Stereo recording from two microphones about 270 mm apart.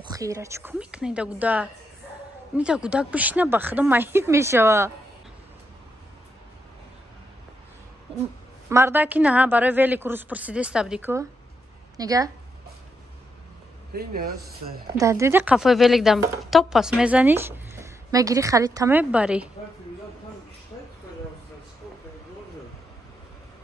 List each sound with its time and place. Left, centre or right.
0.0 s a woman's voice: centre
8.6 s a woman's voice: centre
13.9 s speech: right
15.0 s a woman's voice: centre